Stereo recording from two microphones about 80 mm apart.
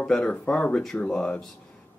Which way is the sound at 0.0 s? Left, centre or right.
Centre.